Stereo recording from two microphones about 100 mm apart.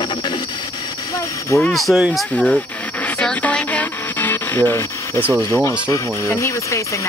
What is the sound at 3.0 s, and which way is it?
Music, 15° left (ahead or behind).